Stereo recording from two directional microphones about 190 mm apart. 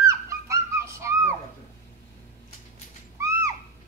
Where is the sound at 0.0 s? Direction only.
15° right (ahead or behind).